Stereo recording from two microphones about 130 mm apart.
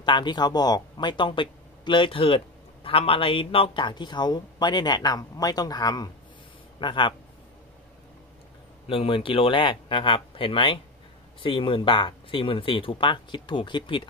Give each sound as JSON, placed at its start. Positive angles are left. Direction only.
{"t": 0.0, "sound": "speech", "side_deg": 35}
{"t": 8.8, "sound": "speech", "side_deg": 45}